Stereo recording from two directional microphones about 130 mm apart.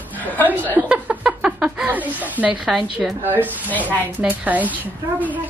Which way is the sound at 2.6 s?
Centre (ahead or behind).